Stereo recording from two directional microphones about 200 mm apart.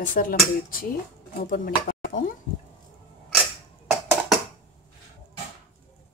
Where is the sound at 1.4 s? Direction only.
50° left (ahead or behind).